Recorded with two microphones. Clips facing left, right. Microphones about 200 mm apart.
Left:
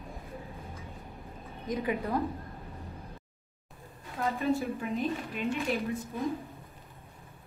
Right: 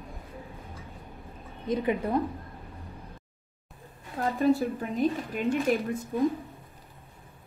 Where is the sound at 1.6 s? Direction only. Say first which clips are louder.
Right 4 dB; 25° right (ahead or behind).